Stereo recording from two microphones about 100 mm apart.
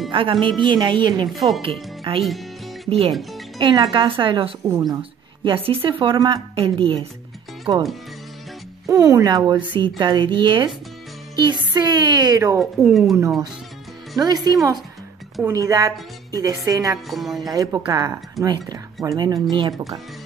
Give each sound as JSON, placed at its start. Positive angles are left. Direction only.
{"t": 0.1, "sound": "speech", "side_deg": -60}
{"t": 1.6, "sound": "speech", "side_deg": -65}
{"t": 2.2, "sound": "music", "side_deg": 0}
{"t": 3.1, "sound": "speech", "side_deg": 0}
{"t": 3.5, "sound": "speech", "side_deg": -50}
{"t": 4.7, "sound": "a woman's voice", "side_deg": -35}
{"t": 5.4, "sound": "a woman's voice", "side_deg": -60}
{"t": 8.8, "sound": "a woman's voice", "side_deg": -35}
{"t": 12.7, "sound": "speech", "side_deg": 0}
{"t": 14.2, "sound": "a woman's voice", "side_deg": -40}
{"t": 17.1, "sound": "speech", "side_deg": 0}
{"t": 17.5, "sound": "a woman's voice", "side_deg": -35}
{"t": 18.4, "sound": "speech", "side_deg": 0}
{"t": 19.0, "sound": "a woman's voice", "side_deg": -40}